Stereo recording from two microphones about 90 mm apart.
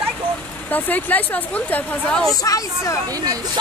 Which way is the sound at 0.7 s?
20° left (ahead or behind).